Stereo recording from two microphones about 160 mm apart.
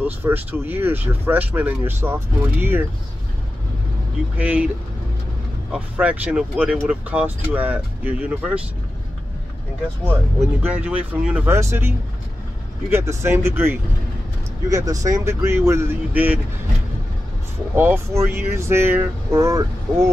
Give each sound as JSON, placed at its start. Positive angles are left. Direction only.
{"t": 0.0, "sound": "speech", "side_deg": -10}
{"t": 4.4, "sound": "speech", "side_deg": -10}
{"t": 5.7, "sound": "speech", "side_deg": -10}
{"t": 10.7, "sound": "speech", "side_deg": -10}
{"t": 12.9, "sound": "speech", "side_deg": -15}
{"t": 17.7, "sound": "speech", "side_deg": -15}